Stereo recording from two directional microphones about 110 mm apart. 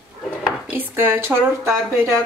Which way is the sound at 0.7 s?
15° right (ahead or behind).